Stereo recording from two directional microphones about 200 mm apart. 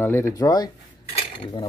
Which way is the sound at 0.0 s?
10° left (ahead or behind).